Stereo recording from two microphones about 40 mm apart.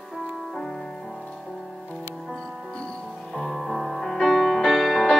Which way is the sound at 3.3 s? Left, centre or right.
Centre.